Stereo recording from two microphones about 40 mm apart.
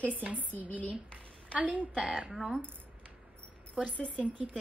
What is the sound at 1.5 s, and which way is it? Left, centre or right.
Speech, right.